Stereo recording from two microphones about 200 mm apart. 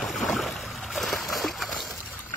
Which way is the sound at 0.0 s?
Centre (ahead or behind).